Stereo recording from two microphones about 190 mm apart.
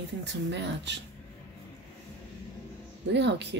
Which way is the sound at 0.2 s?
65° right (ahead or behind).